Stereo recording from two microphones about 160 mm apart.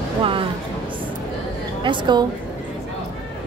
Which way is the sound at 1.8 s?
30° right (ahead or behind).